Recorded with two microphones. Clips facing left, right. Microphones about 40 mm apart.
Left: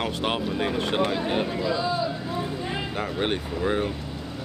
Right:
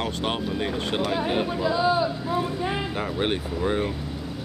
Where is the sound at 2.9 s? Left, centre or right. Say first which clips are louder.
Right 1 dB; centre.